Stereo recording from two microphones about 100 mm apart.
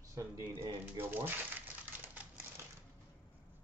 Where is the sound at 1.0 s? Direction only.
20° right (ahead or behind).